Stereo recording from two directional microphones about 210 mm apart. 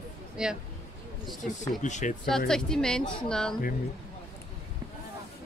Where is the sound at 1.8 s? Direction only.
35° left (ahead or behind).